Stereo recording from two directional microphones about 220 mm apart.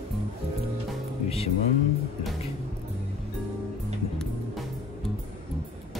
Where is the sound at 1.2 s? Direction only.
25° left (ahead or behind).